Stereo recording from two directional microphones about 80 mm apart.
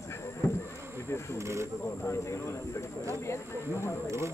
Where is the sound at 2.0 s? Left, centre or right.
Left.